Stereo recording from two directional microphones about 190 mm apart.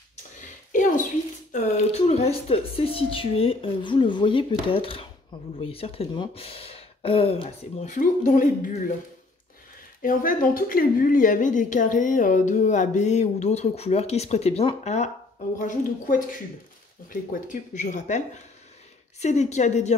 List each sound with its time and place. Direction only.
0.7 s a sound: 45° left (ahead or behind)
1.5 s speech: 35° left (ahead or behind)
7.8 s a woman's voice: 40° left (ahead or behind)
10.0 s a woman's voice: 45° left (ahead or behind)